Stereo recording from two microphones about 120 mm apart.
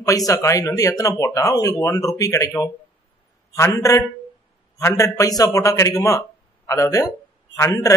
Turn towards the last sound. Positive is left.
turn(degrees=25)  # may be behind; listen again after turning